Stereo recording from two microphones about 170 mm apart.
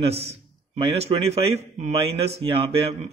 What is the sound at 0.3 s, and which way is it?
A man's voice, 35° right (ahead or behind).